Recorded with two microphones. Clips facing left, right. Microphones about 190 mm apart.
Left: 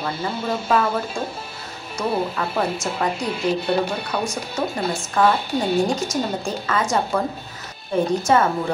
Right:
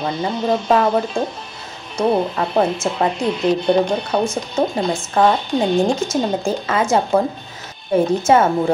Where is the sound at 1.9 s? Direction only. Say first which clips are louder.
Right 6 dB; 25° right (ahead or behind).